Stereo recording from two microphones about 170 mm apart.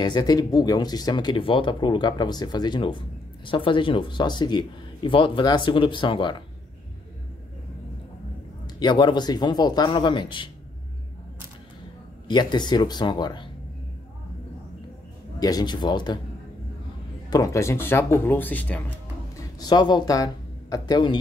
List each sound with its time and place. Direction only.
0.0 s speech: 25° left (ahead or behind)
8.6 s speech: 25° left (ahead or behind)
12.3 s speech: 25° left (ahead or behind)
15.3 s speech: 20° left (ahead or behind)
17.3 s speech: 20° left (ahead or behind)
19.6 s speech: 25° left (ahead or behind)